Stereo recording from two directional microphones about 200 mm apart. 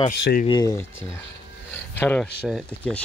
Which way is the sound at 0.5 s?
15° left (ahead or behind).